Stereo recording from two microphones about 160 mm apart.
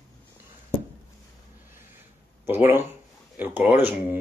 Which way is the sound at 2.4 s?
15° right (ahead or behind).